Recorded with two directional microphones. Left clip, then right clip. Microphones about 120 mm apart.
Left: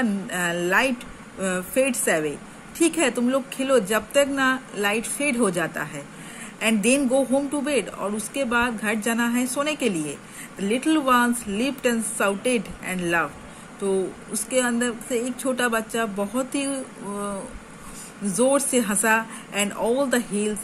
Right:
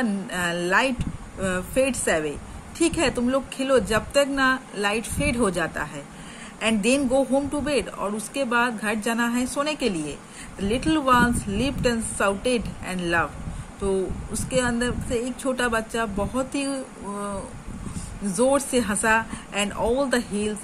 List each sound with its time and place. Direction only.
0.0 s a man's voice: 15° left (ahead or behind)